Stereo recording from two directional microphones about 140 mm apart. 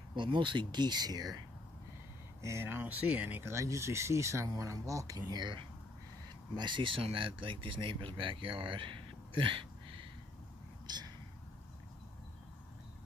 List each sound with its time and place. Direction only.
0.1 s speech: 35° right (ahead or behind)
2.4 s speech: 20° right (ahead or behind)